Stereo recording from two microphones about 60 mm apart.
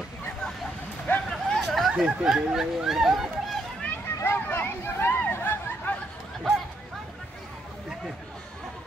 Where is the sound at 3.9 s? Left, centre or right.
Left.